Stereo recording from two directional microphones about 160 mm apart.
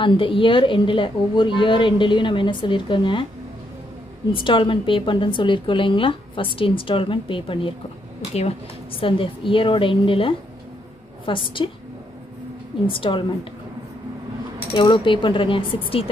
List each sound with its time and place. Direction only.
0.0 s a woman's voice: 30° left (ahead or behind)
4.3 s a woman's voice: 30° left (ahead or behind)
12.8 s a woman's voice: 30° left (ahead or behind)
14.7 s a woman's voice: 30° left (ahead or behind)